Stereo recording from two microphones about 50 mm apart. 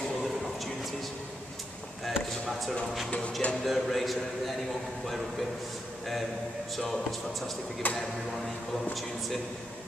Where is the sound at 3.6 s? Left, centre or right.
Centre.